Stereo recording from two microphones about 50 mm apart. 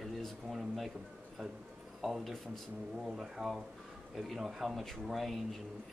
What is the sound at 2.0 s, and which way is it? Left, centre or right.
Speech, centre.